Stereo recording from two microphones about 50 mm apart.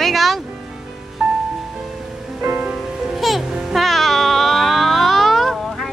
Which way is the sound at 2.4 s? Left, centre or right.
Right.